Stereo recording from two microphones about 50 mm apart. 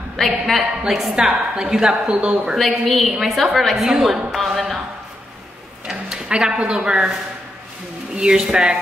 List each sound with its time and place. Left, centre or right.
0.2 s a woman's voice: centre
1.1 s a woman's voice: centre
2.5 s a woman's voice: centre
5.9 s speech: centre
8.2 s a woman's voice: centre